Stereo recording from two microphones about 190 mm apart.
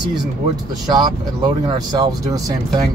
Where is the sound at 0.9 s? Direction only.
25° right (ahead or behind).